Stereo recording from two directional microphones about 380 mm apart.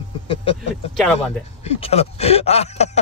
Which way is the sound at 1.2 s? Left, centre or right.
Centre.